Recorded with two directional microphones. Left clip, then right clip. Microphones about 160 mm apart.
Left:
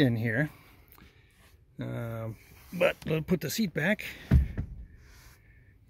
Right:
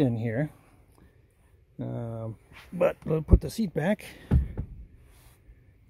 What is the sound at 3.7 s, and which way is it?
Speech, 20° right (ahead or behind).